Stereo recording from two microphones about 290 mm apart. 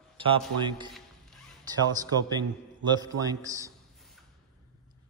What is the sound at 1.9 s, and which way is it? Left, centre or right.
Speech, centre.